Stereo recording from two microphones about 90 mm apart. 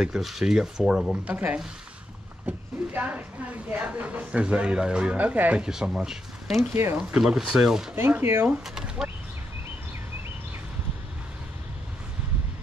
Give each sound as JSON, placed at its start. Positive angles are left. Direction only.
{"t": 0.0, "sound": "speech", "side_deg": -5}
{"t": 1.2, "sound": "speech", "side_deg": -15}
{"t": 6.7, "sound": "speech", "side_deg": -25}
{"t": 7.0, "sound": "speech", "side_deg": -10}
{"t": 7.9, "sound": "speech", "side_deg": -25}
{"t": 8.5, "sound": "speech", "side_deg": -10}